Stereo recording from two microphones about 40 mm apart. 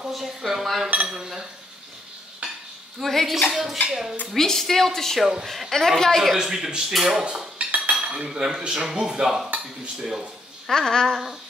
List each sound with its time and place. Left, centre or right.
0.1 s speech: centre
2.4 s stir: right
3.0 s speech: centre
4.3 s a woman's voice: centre
5.7 s a woman's voice: centre
6.3 s speech: centre
7.5 s cutlery: right
8.3 s speech: centre
10.7 s a woman's voice: centre